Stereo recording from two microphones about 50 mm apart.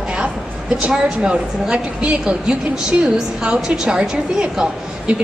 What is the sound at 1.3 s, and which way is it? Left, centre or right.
A woman's voice, right.